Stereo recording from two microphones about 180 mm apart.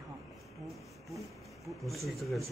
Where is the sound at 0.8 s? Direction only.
Centre (ahead or behind).